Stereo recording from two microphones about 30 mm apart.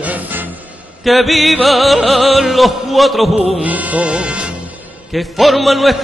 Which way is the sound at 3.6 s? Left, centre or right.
Right.